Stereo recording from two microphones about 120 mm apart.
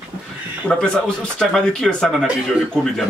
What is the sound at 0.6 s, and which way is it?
Speech, 5° left (ahead or behind).